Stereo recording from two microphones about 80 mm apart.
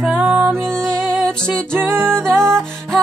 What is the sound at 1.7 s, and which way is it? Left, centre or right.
Music, right.